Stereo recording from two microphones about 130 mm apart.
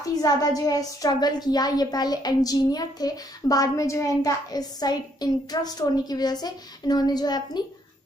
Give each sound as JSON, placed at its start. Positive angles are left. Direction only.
{"t": 0.2, "sound": "a woman's voice", "side_deg": 30}